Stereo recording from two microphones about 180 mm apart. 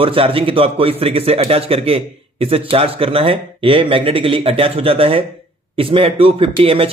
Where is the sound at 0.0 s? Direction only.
30° right (ahead or behind).